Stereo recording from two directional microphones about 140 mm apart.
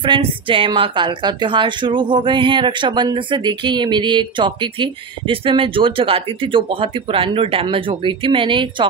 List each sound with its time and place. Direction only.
0.0 s a woman's voice: 35° right (ahead or behind)